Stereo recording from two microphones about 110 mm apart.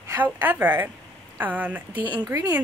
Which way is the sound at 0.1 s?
15° right (ahead or behind).